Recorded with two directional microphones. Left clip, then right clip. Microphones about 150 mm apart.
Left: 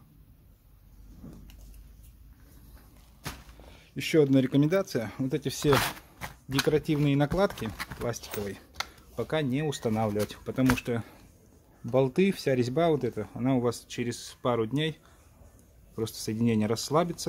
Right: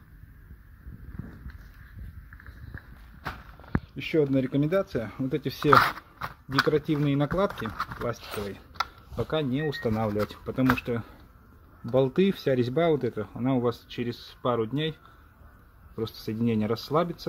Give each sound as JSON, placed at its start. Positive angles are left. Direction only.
{"t": 3.9, "sound": "speech", "side_deg": 35}
{"t": 9.1, "sound": "speech", "side_deg": -5}
{"t": 16.0, "sound": "speech", "side_deg": 5}